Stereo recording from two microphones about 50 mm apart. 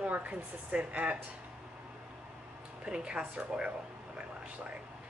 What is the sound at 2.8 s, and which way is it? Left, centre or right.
Speech, centre.